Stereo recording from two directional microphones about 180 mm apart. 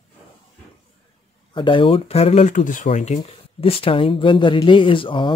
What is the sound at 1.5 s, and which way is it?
Speech, 30° left (ahead or behind).